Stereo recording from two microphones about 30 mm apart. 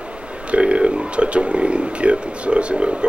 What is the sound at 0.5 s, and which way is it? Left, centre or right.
Speech, right.